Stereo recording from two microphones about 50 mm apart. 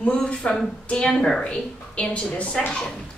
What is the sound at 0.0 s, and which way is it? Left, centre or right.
A woman's voice, left.